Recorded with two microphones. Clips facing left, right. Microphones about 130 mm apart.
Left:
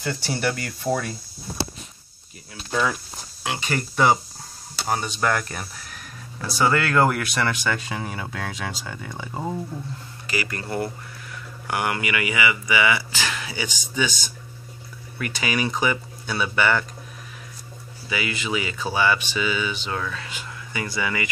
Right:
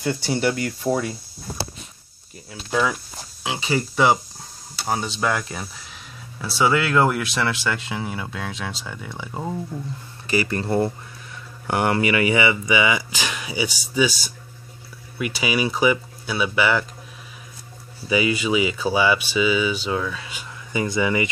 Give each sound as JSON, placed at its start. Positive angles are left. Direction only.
{"t": 0.1, "sound": "speech", "side_deg": -20}
{"t": 2.7, "sound": "speech", "side_deg": -5}
{"t": 10.3, "sound": "speech", "side_deg": -30}
{"t": 15.1, "sound": "speech", "side_deg": -15}
{"t": 18.1, "sound": "speech", "side_deg": -15}